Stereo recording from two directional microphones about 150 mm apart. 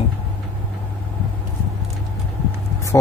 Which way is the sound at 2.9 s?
20° left (ahead or behind).